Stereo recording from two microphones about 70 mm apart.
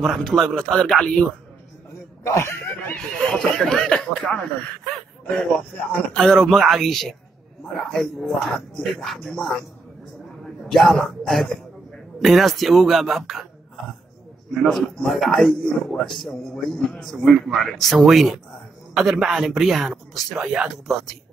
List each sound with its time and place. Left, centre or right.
0.0 s speech: centre
2.2 s speech: left
3.3 s speech: centre
4.2 s speech: centre
6.1 s speech: centre
10.7 s a man's voice: centre
14.5 s speech: centre